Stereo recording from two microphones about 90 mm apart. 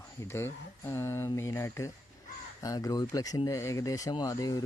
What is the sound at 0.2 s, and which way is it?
Speech, 30° left (ahead or behind).